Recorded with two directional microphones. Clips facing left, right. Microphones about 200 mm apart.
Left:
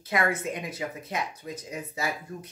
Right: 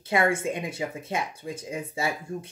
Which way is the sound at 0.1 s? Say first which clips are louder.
Right 3 dB; 25° right (ahead or behind).